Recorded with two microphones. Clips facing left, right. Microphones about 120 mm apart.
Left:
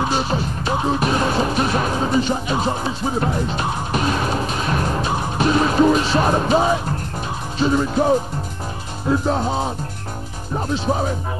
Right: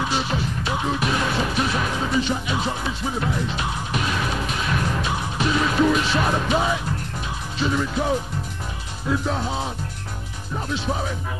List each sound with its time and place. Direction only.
0.0 s music: 40° left (ahead or behind)
10.5 s speech: 35° left (ahead or behind)